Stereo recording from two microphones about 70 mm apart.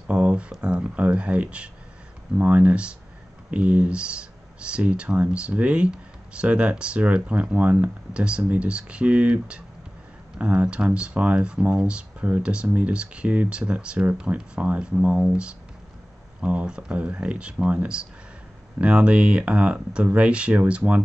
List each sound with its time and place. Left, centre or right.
0.1 s speech: centre